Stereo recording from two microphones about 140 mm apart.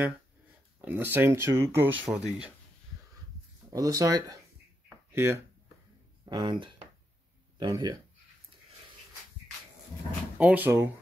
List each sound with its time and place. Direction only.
0.7 s speech: 15° right (ahead or behind)
2.0 s speech: 5° right (ahead or behind)
3.7 s speech: 25° right (ahead or behind)
6.2 s speech: 30° right (ahead or behind)
10.3 s speech: 10° right (ahead or behind)